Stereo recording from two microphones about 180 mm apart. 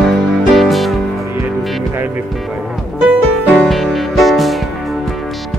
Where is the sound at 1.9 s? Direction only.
10° right (ahead or behind).